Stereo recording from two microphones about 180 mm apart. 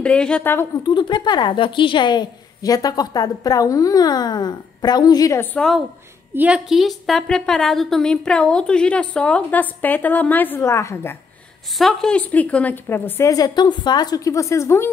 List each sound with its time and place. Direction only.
0.0 s a woman's voice: 5° left (ahead or behind)
0.8 s a woman's voice: 25° left (ahead or behind)
11.8 s a woman's voice: 5° left (ahead or behind)